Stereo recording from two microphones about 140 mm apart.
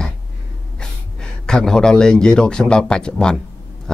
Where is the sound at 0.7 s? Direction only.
5° left (ahead or behind).